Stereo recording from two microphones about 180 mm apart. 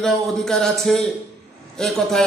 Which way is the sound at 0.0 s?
Centre (ahead or behind).